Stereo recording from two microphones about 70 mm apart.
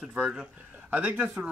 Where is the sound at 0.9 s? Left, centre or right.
Right.